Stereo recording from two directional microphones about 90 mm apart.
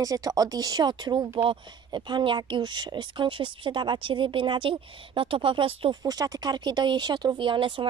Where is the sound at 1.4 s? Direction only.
65° right (ahead or behind).